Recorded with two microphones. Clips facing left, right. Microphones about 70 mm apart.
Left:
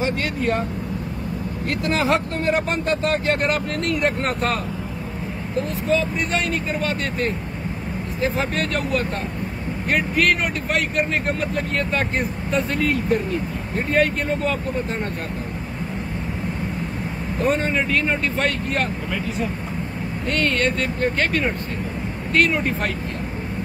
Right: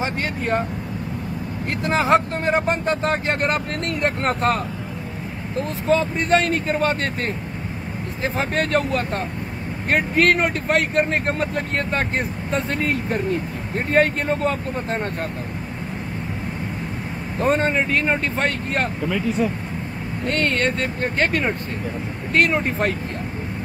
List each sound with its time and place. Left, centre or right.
1.9 s speech: right
5.6 s speech: right
17.4 s speech: right
19.1 s speech: centre
20.2 s speech: right